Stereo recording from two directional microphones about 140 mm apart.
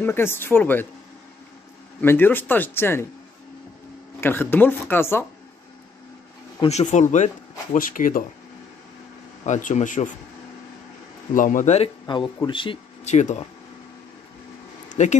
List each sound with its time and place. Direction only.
0.0 s speech: 15° left (ahead or behind)
2.0 s speech: 15° left (ahead or behind)
4.2 s speech: 15° left (ahead or behind)
6.6 s speech: 50° left (ahead or behind)
7.7 s speech: 75° left (ahead or behind)
9.5 s speech: 60° left (ahead or behind)
11.3 s speech: 70° left (ahead or behind); by 11.9 s 55° left (ahead or behind)
12.4 s speech: 35° left (ahead or behind)
13.0 s speech: 55° left (ahead or behind)
14.9 s a sound: 55° left (ahead or behind)